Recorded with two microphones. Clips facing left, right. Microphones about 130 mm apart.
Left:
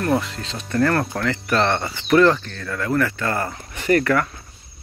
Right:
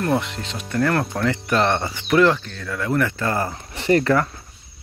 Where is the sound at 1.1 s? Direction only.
15° right (ahead or behind).